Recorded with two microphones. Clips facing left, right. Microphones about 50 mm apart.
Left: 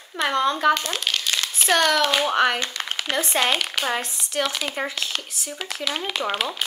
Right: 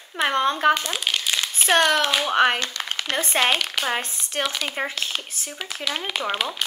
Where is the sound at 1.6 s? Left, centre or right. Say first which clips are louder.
Right 1 dB; right.